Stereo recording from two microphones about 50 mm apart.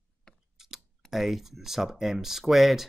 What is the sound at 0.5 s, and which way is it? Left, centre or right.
Clicking, centre.